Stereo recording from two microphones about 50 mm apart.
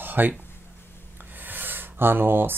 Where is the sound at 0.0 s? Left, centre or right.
Right.